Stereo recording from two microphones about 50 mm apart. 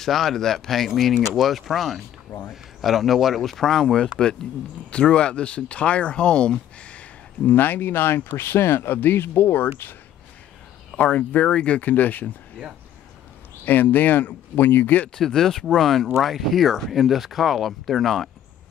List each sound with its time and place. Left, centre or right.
0.0 s speech: centre; by 7.5 s left
7.5 s speech: left
11.0 s speech: left
11.8 s speech: left
13.7 s speech: left
15.1 s speech: centre